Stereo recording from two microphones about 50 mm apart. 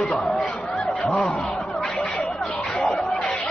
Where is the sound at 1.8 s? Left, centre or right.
Centre.